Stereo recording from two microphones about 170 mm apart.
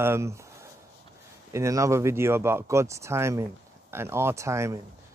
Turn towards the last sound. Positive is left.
turn(degrees=-15)  # may be behind; listen again after turning